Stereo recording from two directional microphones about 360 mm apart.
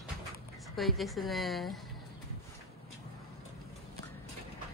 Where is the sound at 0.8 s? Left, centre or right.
Centre.